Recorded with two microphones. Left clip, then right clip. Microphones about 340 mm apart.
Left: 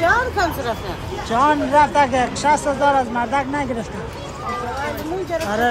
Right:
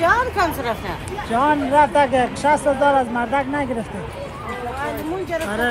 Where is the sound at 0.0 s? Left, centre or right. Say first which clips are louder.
Even; right.